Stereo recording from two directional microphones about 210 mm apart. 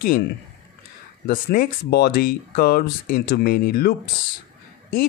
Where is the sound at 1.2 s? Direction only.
40° left (ahead or behind).